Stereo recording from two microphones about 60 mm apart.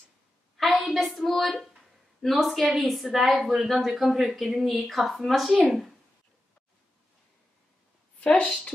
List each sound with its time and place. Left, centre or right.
0.6 s a sound: centre
2.2 s a child's voice: centre
8.2 s a woman's voice: left